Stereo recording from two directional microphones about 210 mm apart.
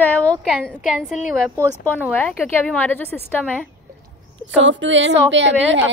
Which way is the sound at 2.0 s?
5° left (ahead or behind).